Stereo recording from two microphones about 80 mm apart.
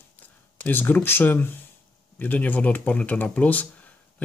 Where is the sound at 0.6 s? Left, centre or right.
Left.